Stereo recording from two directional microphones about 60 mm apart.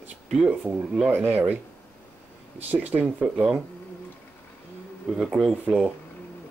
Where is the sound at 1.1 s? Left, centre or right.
Right.